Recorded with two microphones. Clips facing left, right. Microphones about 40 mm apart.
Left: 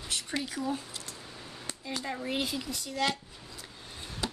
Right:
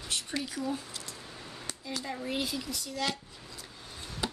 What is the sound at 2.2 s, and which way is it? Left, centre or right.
Speech, left.